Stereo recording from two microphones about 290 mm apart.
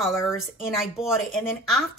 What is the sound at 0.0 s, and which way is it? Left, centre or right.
Speech, centre.